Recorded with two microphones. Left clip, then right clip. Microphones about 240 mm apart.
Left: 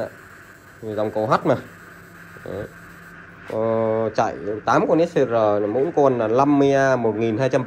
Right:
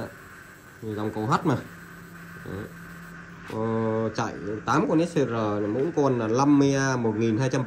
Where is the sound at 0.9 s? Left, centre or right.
Centre.